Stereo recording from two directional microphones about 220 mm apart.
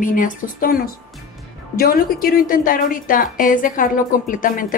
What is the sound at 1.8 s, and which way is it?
A woman's voice, 40° left (ahead or behind).